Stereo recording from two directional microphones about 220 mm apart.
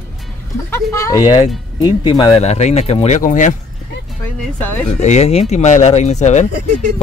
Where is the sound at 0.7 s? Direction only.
15° left (ahead or behind); by 3.5 s 35° left (ahead or behind).